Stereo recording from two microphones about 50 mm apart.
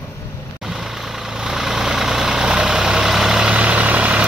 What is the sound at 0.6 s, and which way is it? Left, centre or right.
Vehicle, centre.